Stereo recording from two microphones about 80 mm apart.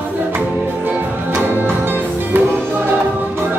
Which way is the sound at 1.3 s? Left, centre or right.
Right.